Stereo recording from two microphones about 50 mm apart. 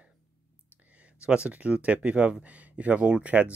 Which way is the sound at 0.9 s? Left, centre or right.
Right.